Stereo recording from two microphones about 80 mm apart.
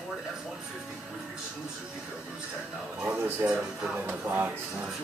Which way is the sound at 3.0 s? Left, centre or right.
Right.